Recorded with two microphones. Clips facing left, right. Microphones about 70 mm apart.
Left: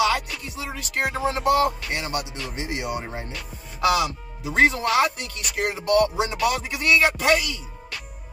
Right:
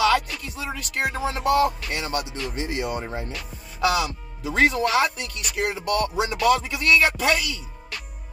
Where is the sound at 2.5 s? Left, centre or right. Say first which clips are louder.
Right 1 dB; centre.